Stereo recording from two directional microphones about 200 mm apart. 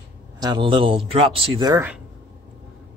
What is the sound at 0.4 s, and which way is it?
A man's voice, 25° right (ahead or behind).